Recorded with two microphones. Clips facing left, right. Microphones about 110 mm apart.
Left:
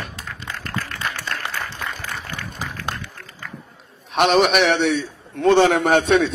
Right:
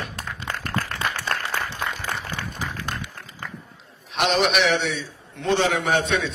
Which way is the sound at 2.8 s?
15° right (ahead or behind).